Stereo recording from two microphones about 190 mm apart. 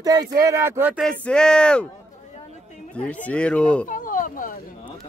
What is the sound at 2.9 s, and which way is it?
Speech, 5° left (ahead or behind).